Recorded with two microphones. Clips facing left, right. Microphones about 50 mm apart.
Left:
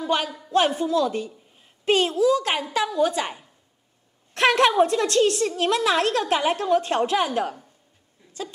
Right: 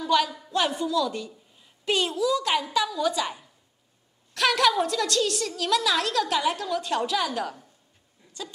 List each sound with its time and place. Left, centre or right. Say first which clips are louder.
0.0 s a woman's voice: right 1 dB; left